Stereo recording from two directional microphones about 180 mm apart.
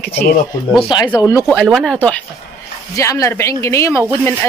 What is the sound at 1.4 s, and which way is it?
Speech, 5° left (ahead or behind).